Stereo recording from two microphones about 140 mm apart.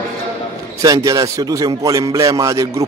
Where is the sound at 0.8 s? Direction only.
25° right (ahead or behind).